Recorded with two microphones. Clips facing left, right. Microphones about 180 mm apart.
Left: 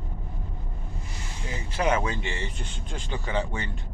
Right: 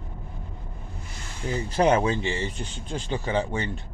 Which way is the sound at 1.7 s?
35° right (ahead or behind).